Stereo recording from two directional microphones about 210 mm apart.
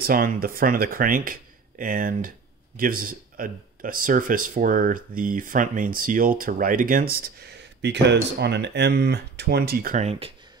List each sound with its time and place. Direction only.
0.0 s speech: 45° right (ahead or behind)